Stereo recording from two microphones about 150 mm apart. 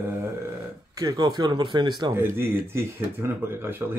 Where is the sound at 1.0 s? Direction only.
25° right (ahead or behind).